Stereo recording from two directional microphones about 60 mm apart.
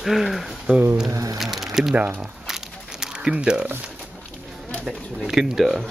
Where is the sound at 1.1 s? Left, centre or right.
Right.